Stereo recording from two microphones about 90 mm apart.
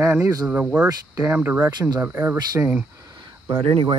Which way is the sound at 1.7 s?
50° right (ahead or behind).